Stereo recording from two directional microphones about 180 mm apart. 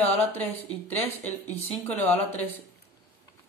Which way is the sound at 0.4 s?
10° left (ahead or behind).